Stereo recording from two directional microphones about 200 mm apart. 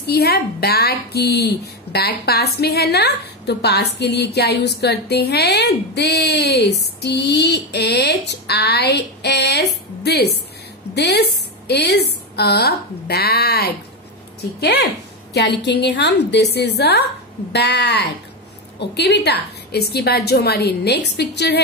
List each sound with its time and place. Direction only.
0.0 s a woman's voice: 55° left (ahead or behind)